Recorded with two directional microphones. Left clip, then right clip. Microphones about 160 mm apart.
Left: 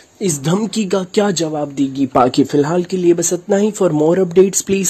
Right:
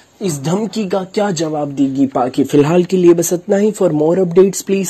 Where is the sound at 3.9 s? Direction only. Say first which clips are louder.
Left 1 dB; 15° left (ahead or behind).